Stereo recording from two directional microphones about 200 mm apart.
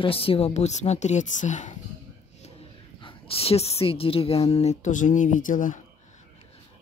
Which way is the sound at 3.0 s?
25° left (ahead or behind).